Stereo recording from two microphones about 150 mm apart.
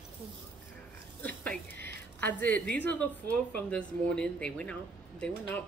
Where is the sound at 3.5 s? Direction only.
10° left (ahead or behind).